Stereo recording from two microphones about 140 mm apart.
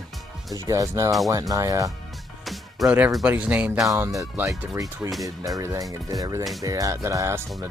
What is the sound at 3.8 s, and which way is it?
Speech, 25° right (ahead or behind).